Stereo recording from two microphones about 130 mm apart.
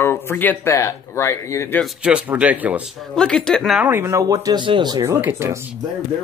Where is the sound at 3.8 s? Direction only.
15° right (ahead or behind); by 5.0 s 35° right (ahead or behind).